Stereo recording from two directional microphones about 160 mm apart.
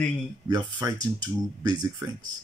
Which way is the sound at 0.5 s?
25° right (ahead or behind).